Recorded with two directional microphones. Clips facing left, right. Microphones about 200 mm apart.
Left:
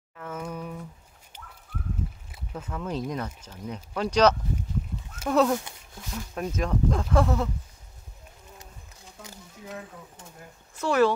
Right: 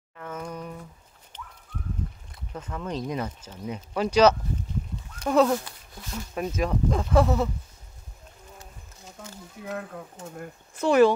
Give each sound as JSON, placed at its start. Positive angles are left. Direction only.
{"t": 0.2, "sound": "a sound", "side_deg": 5}
{"t": 2.3, "sound": "speech", "side_deg": 5}
{"t": 3.2, "sound": "speech", "side_deg": -10}
{"t": 9.7, "sound": "speech", "side_deg": -60}
{"t": 10.8, "sound": "speech", "side_deg": -15}